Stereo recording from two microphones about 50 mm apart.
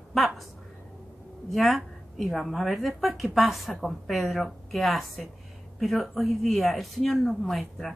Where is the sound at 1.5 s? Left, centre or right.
Centre.